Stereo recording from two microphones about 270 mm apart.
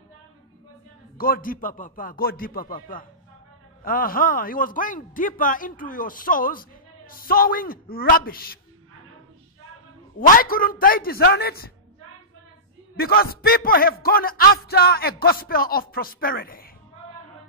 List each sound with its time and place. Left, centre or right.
1.1 s speech: left
10.1 s speech: left
12.9 s speech: left